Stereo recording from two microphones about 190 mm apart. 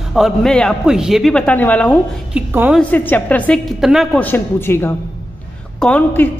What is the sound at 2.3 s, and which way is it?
Speech, 10° right (ahead or behind).